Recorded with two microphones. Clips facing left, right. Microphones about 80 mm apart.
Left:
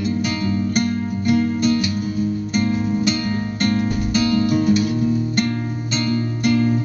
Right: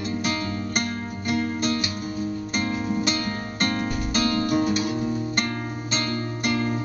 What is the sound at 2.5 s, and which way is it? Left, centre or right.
Music, right.